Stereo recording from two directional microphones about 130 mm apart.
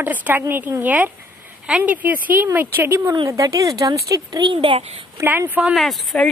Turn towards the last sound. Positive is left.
turn(degrees=0)  # may be behind; listen again after turning